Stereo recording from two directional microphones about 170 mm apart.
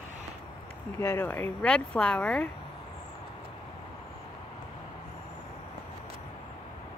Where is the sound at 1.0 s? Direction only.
15° left (ahead or behind).